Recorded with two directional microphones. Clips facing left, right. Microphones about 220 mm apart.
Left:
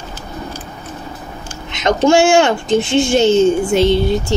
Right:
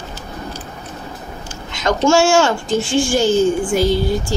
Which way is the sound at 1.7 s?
20° left (ahead or behind).